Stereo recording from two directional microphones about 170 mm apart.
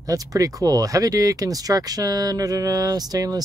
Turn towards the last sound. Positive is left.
turn(degrees=-20)  # may be behind; listen again after turning